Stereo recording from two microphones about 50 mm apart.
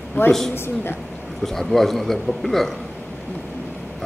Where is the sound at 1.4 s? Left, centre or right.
Centre.